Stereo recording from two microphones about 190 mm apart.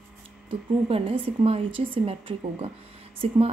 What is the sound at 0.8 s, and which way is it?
Speech, 30° right (ahead or behind).